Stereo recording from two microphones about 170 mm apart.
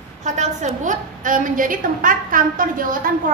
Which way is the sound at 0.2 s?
45° right (ahead or behind).